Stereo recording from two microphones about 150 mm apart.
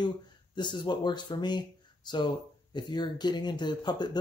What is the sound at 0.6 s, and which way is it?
Speech, 30° left (ahead or behind).